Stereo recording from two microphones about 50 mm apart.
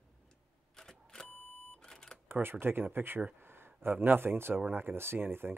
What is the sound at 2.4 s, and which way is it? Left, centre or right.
Speech, right.